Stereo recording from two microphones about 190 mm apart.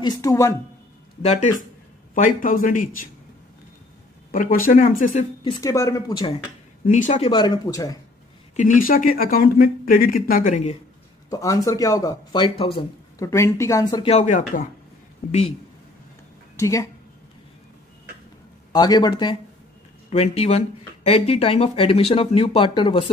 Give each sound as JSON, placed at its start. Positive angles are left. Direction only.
{"t": 0.0, "sound": "speech", "side_deg": 20}
{"t": 1.2, "sound": "speech", "side_deg": 35}
{"t": 4.3, "sound": "speech", "side_deg": 45}
{"t": 5.6, "sound": "speech", "side_deg": 20}
{"t": 6.9, "sound": "speech", "side_deg": 40}
{"t": 7.2, "sound": "speech", "side_deg": 25}
{"t": 8.5, "sound": "speech", "side_deg": 45}
{"t": 11.2, "sound": "speech", "side_deg": 20}
{"t": 13.2, "sound": "speech", "side_deg": 15}
{"t": 14.1, "sound": "speech", "side_deg": 40}
{"t": 16.5, "sound": "a woman's voice", "side_deg": 15}
{"t": 18.7, "sound": "speech", "side_deg": 20}
{"t": 20.1, "sound": "speech", "side_deg": 35}